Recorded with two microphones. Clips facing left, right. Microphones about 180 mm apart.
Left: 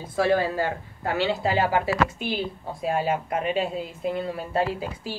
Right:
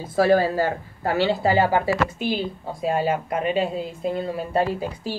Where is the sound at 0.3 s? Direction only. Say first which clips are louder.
Right 3 dB; 40° right (ahead or behind).